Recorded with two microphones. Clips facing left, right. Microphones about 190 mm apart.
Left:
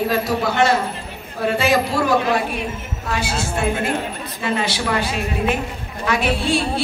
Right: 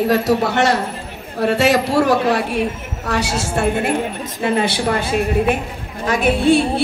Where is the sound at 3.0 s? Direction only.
75° right (ahead or behind).